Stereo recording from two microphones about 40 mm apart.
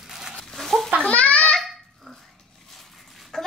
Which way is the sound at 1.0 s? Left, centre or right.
Left.